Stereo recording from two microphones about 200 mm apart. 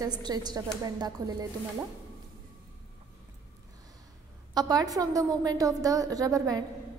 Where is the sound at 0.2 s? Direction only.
20° right (ahead or behind).